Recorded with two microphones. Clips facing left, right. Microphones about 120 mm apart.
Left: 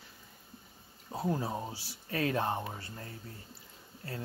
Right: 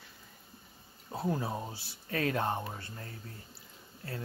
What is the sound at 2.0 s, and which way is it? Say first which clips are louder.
Speech: even; 25° left (ahead or behind).